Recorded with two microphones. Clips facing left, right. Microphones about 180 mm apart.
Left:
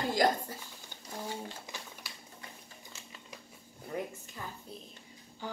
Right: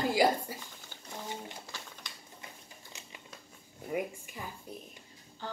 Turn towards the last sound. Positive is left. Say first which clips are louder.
# right 3 dB
turn(degrees=-15)  # may be behind; listen again after turning